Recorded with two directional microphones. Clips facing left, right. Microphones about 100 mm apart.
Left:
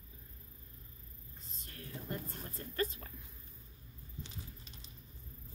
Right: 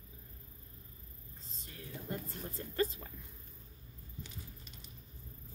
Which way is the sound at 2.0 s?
25° right (ahead or behind).